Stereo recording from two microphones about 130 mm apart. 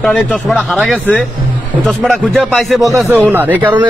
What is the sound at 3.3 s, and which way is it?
Speech, 15° right (ahead or behind).